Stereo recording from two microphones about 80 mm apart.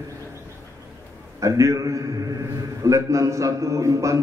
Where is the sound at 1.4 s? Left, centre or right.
Right.